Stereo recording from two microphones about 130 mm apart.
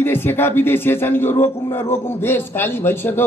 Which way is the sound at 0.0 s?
15° left (ahead or behind).